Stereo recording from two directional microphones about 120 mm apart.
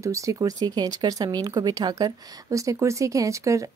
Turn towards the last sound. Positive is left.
turn(degrees=-25)  # may be behind; listen again after turning